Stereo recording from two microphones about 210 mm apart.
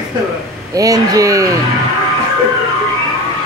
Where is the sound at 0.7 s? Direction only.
15° right (ahead or behind).